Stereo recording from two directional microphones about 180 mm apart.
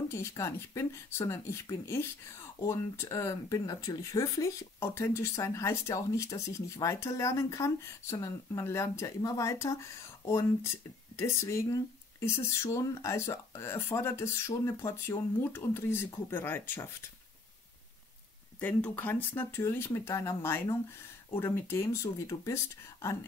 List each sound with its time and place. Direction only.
0.1 s speech: 15° left (ahead or behind)
18.6 s speech: 10° left (ahead or behind)